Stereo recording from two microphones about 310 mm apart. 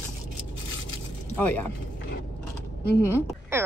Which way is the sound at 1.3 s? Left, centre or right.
Centre.